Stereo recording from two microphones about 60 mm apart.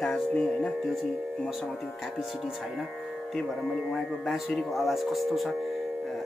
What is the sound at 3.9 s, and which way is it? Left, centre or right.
Speech, centre.